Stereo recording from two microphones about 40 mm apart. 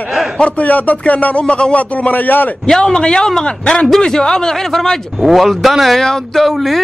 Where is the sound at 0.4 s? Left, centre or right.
Left.